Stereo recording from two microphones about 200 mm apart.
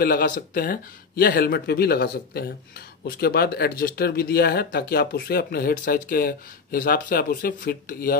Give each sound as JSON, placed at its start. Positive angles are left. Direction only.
{"t": 0.0, "sound": "speech", "side_deg": 50}